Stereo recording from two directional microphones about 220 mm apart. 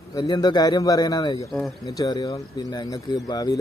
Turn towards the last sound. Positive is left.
turn(degrees=15)  # may be behind; listen again after turning